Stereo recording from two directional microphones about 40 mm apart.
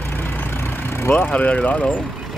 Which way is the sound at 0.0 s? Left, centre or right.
Left.